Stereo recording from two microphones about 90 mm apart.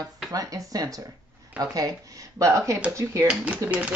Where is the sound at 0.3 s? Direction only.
40° right (ahead or behind).